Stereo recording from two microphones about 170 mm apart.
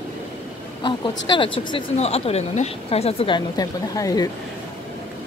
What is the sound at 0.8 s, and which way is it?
Speech, 25° left (ahead or behind).